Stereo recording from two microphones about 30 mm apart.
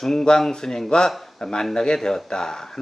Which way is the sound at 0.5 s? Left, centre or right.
Left.